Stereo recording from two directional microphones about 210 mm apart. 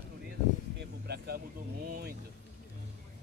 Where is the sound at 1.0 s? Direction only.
50° right (ahead or behind).